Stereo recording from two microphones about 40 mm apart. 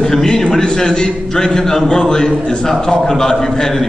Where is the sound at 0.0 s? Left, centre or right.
Centre.